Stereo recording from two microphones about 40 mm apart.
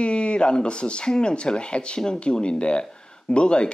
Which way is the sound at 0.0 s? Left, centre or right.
Left.